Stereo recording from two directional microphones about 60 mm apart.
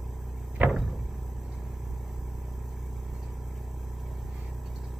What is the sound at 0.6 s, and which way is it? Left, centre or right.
Vehicle, right.